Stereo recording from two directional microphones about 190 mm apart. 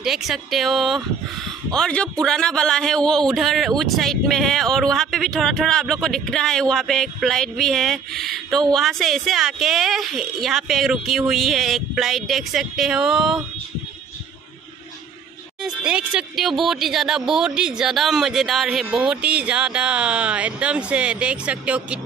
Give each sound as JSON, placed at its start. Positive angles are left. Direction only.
{"t": 0.0, "sound": "a man's voice", "side_deg": 0}
{"t": 15.6, "sound": "a man's voice", "side_deg": -5}